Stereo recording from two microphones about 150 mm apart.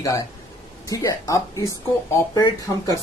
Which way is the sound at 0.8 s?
25° left (ahead or behind).